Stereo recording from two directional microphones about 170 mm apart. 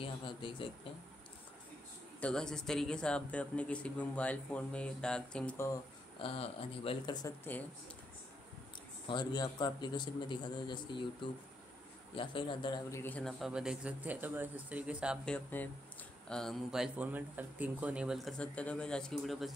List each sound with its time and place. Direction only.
0.0 s speech: 30° left (ahead or behind)
2.1 s speech: 5° left (ahead or behind)
6.2 s speech: 35° left (ahead or behind)
7.2 s speech: 10° left (ahead or behind)
9.0 s a man's voice: 25° left (ahead or behind)
12.9 s speech: 10° left (ahead or behind); by 15.1 s 5° right (ahead or behind)
15.2 s speech: 10° left (ahead or behind)